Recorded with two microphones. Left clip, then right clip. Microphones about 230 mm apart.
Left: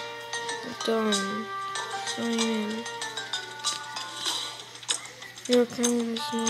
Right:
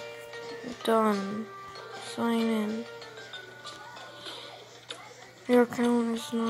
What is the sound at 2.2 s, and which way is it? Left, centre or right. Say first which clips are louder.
Speech: right 2 dB; centre.